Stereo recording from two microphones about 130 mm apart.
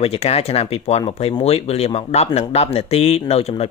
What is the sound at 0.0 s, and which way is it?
Speech, 50° left (ahead or behind).